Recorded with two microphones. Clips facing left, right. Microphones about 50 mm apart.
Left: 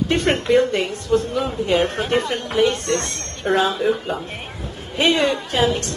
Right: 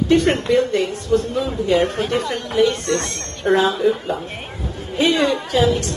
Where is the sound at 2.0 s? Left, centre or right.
Left.